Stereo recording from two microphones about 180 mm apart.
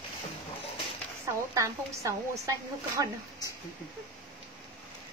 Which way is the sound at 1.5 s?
20° right (ahead or behind).